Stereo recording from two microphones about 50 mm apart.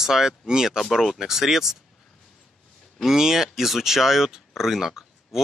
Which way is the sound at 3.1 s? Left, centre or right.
Centre.